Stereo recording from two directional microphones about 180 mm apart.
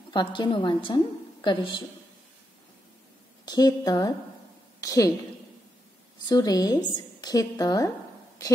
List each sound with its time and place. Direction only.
0.1 s a woman's voice: 25° left (ahead or behind)
3.4 s a woman's voice: 20° left (ahead or behind)
6.2 s a woman's voice: 20° left (ahead or behind)